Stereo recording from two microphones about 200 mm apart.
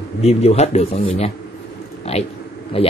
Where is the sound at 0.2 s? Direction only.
30° left (ahead or behind).